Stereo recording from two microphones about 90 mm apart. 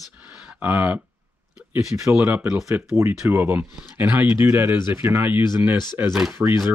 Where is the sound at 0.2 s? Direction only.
10° right (ahead or behind).